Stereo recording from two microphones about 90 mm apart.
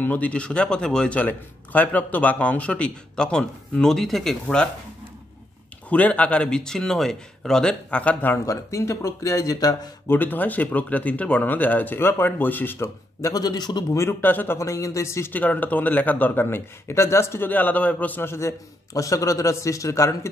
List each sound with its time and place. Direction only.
0.0 s a man's voice: 15° left (ahead or behind)
5.9 s a man's voice: 15° left (ahead or behind)
8.5 s speech: 35° left (ahead or behind)
10.0 s speech: 20° left (ahead or behind)
13.3 s a man's voice: 45° left (ahead or behind)
13.9 s speech: 25° left (ahead or behind)
14.6 s speech: 35° left (ahead or behind)
15.3 s speech: 20° left (ahead or behind)
18.9 s speech: 40° left (ahead or behind)